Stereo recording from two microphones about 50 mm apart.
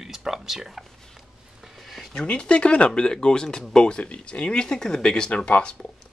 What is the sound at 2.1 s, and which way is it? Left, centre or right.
Speech, left.